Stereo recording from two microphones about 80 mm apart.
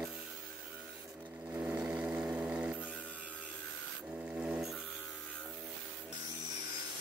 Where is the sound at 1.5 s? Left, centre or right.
Right.